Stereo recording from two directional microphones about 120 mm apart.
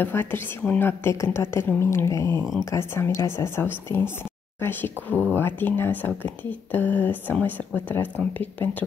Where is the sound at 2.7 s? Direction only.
20° left (ahead or behind).